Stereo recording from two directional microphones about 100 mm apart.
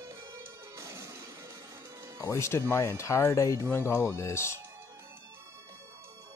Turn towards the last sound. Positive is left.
turn(degrees=25)  # may be behind; listen again after turning